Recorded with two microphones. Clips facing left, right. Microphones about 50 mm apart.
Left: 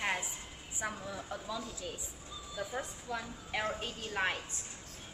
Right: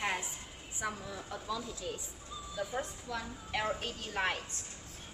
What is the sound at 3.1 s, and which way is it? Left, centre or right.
A woman's voice, centre.